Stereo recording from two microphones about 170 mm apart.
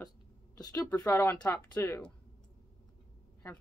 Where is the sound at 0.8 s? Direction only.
15° left (ahead or behind).